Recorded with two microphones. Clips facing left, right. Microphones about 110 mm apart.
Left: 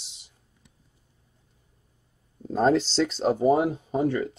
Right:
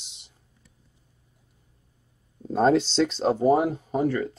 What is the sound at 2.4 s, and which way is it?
Speech, centre (ahead or behind).